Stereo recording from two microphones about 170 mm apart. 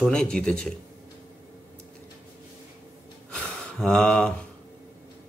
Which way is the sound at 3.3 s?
5° left (ahead or behind).